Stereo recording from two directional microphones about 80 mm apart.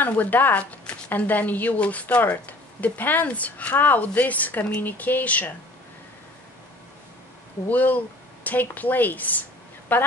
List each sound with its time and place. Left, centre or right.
0.0 s a woman's voice: left
7.6 s a woman's voice: left